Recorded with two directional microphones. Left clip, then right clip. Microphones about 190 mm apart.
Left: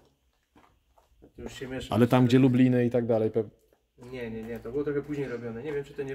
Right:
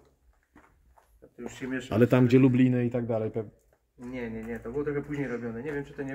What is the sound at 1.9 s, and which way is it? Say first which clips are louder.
A man's voice: even; 20° left (ahead or behind).